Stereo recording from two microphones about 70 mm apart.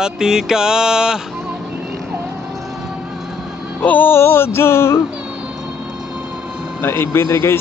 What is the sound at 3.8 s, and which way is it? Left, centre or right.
Music, left.